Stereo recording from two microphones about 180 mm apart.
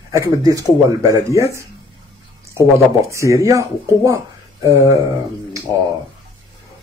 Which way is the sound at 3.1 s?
15° right (ahead or behind).